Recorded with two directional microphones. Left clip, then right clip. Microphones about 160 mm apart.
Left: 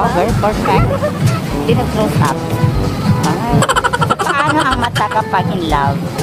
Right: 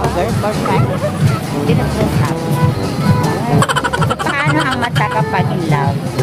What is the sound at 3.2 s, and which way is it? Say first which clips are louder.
Music: left 2 dB; centre (ahead or behind).